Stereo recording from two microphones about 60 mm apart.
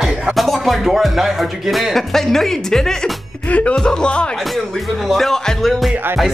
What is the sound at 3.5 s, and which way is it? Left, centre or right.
Speech, left.